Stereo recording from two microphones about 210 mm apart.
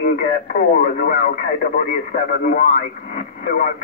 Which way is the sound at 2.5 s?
45° left (ahead or behind).